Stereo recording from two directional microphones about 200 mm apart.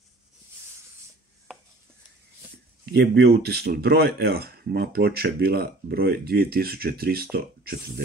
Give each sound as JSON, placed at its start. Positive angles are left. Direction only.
{"t": 2.8, "sound": "speech", "side_deg": -55}